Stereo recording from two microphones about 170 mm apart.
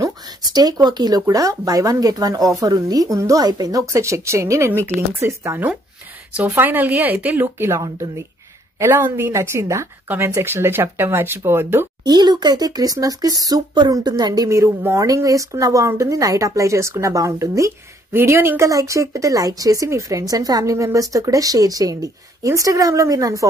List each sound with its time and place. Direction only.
0.0 s a woman's voice: 20° right (ahead or behind)
12.0 s speech: 25° right (ahead or behind)